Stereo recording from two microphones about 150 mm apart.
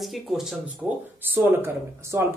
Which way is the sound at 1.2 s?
15° right (ahead or behind).